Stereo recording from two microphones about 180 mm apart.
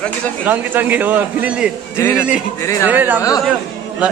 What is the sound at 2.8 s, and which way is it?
Speech, 10° right (ahead or behind).